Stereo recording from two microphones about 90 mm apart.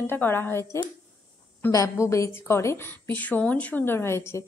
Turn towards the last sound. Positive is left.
turn(degrees=30)  # may be behind; listen again after turning